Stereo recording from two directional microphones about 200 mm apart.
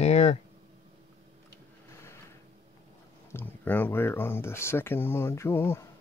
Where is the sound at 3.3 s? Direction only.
10° left (ahead or behind).